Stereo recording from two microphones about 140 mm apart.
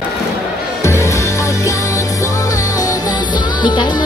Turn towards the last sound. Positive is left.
turn(degrees=30)  # may be behind; listen again after turning